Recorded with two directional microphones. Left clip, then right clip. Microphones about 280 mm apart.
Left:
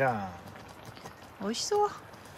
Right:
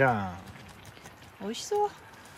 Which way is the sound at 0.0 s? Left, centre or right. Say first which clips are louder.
Right 4 dB; right.